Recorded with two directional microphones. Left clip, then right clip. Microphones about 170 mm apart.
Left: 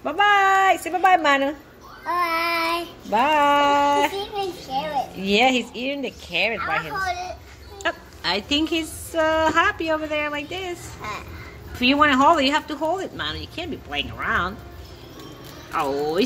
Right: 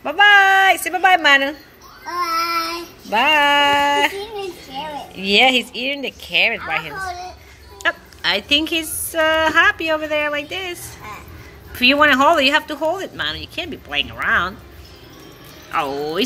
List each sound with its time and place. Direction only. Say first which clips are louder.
0.0 s a sound: right 6 dB; 5° right (ahead or behind)
2.0 s child singing: right 1 dB; 40° left (ahead or behind)
3.1 s a woman's voice: right 3 dB; centre (ahead or behind)
15.7 s a woman's voice: right 2 dB; 10° right (ahead or behind)